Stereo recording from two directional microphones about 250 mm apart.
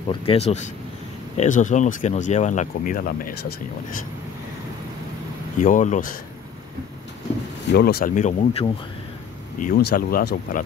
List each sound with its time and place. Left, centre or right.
0.1 s speech: left
5.6 s speech: left
7.6 s speech: left